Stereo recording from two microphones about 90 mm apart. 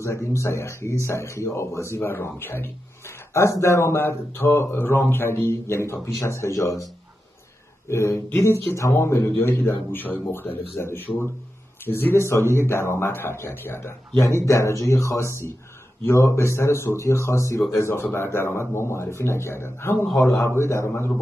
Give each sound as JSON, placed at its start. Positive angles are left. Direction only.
{"t": 0.0, "sound": "a man's voice", "side_deg": 35}
{"t": 7.9, "sound": "a man's voice", "side_deg": 30}